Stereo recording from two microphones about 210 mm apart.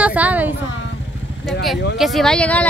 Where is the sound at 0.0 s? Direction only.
5° right (ahead or behind).